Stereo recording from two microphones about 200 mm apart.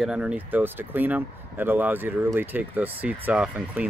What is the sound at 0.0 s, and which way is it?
Speech, 5° right (ahead or behind).